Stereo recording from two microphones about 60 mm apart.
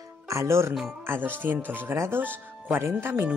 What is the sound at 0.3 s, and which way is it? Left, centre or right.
Speech, right.